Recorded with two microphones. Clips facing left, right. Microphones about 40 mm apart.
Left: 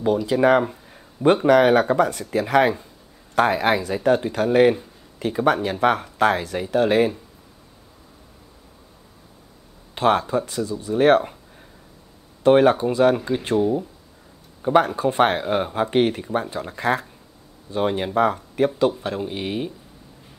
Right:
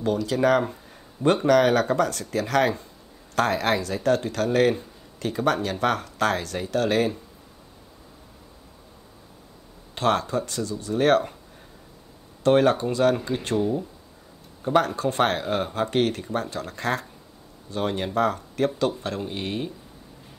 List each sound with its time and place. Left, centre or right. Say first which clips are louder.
0.0 s speech: left 4 dB; centre
9.9 s speech: left 4 dB; centre
12.4 s speech: left 4 dB; centre